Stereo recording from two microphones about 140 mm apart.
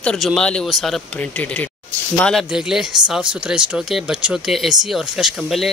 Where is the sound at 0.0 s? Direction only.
Centre (ahead or behind).